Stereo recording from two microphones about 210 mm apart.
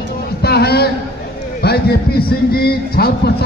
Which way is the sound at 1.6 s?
50° left (ahead or behind).